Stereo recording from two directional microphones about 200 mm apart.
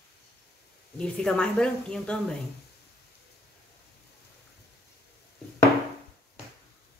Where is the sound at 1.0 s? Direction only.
5° left (ahead or behind).